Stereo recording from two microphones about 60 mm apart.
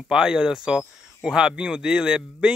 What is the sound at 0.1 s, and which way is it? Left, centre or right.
Speech, centre.